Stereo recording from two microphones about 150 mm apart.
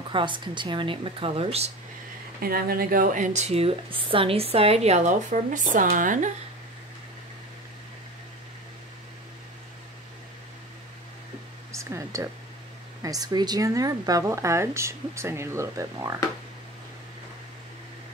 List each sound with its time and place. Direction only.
0.1 s speech: 30° right (ahead or behind)
2.4 s speech: 80° right; by 6.3 s 60° right (ahead or behind)
11.7 s a sound: 20° right (ahead or behind)
13.0 s speech: 25° right (ahead or behind)